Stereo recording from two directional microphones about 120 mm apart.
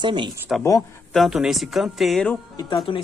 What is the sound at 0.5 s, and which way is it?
Speech, 5° right (ahead or behind).